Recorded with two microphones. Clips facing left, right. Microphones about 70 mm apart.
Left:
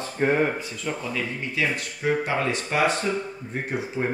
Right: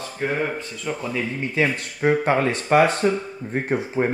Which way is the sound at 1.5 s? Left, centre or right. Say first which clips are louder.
Right 4 dB; right.